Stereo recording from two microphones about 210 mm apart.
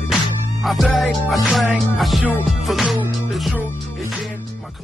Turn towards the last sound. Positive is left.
turn(degrees=0)  # may be behind; listen again after turning